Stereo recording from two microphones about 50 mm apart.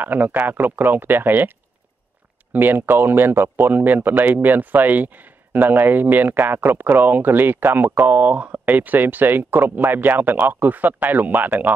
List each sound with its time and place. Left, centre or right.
0.0 s a man's voice: right
2.5 s a man's voice: right
8.3 s a man's voice: right